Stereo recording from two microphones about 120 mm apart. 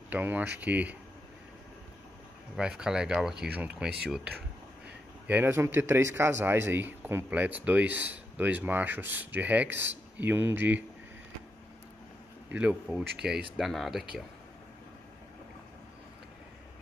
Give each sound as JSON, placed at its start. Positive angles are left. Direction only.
{"t": 0.1, "sound": "speech", "side_deg": -15}
{"t": 2.5, "sound": "speech", "side_deg": -5}
{"t": 12.5, "sound": "speech", "side_deg": -10}